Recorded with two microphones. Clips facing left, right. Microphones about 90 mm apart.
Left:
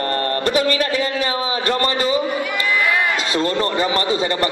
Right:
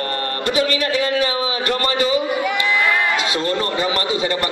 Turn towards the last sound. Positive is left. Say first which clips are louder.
# left 1 dB
turn(degrees=35)  # may be behind; listen again after turning